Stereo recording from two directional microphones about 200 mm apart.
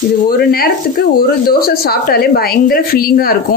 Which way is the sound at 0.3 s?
45° left (ahead or behind).